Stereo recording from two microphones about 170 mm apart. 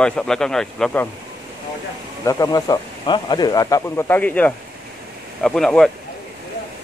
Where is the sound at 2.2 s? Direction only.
20° left (ahead or behind); by 5.9 s 5° left (ahead or behind).